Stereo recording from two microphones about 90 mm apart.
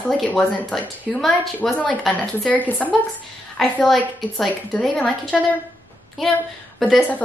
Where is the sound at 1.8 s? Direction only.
15° left (ahead or behind).